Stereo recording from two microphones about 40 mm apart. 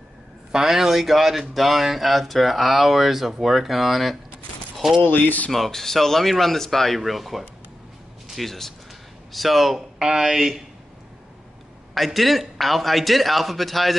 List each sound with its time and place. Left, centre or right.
0.5 s speech: centre
5.0 s speech: left
5.5 s speech: centre
11.9 s speech: centre